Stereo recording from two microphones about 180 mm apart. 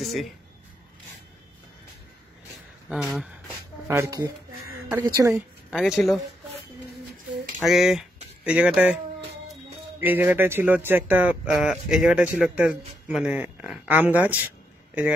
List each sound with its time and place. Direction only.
0.0 s speech: centre (ahead or behind)
2.9 s speech: centre (ahead or behind)
3.8 s speech: 15° right (ahead or behind)
5.7 s speech: centre (ahead or behind)
7.6 s speech: centre (ahead or behind)